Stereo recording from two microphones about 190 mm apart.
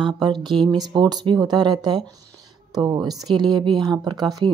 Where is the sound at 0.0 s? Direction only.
25° right (ahead or behind).